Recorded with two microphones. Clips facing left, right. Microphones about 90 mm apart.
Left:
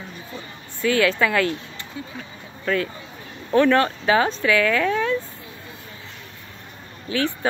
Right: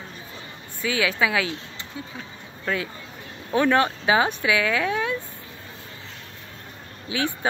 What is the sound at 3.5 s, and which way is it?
Speech, 15° right (ahead or behind).